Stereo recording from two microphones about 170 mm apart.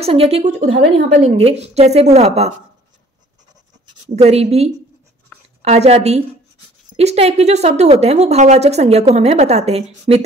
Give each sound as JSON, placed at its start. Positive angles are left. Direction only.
{"t": 0.0, "sound": "speech", "side_deg": -35}
{"t": 4.1, "sound": "speech", "side_deg": -40}